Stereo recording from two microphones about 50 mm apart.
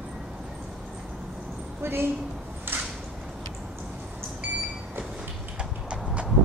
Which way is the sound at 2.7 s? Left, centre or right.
Right.